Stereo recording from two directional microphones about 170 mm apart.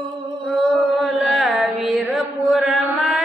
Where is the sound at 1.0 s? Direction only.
Centre (ahead or behind).